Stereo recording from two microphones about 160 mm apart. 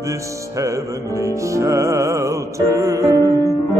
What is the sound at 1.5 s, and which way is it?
Music, 20° right (ahead or behind).